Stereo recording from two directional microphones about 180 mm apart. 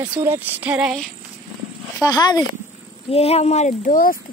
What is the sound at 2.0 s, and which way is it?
Speech, 20° left (ahead or behind).